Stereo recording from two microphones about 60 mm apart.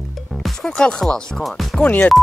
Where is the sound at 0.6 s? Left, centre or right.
Centre.